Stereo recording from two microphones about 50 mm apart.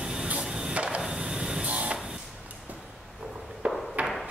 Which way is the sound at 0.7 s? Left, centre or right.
Right.